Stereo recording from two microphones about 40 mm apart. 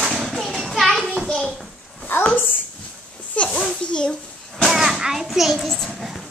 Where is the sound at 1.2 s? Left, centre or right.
Centre.